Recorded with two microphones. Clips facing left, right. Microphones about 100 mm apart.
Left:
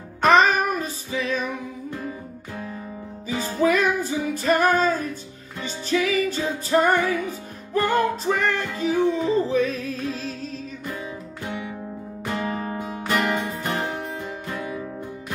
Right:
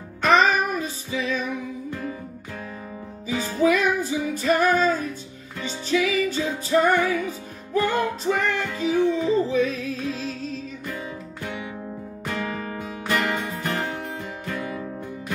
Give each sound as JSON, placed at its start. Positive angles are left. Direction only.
{"t": 0.2, "sound": "music", "side_deg": 45}
{"t": 3.3, "sound": "music", "side_deg": 40}
{"t": 12.3, "sound": "music", "side_deg": 30}